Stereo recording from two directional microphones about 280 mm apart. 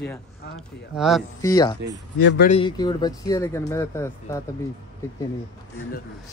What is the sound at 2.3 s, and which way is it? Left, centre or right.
Speech, left.